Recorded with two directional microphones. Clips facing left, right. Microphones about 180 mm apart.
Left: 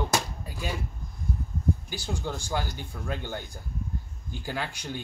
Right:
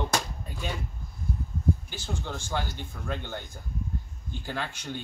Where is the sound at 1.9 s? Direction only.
10° left (ahead or behind).